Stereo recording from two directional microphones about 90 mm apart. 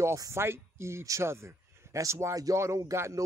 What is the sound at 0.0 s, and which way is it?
Speech, 35° right (ahead or behind).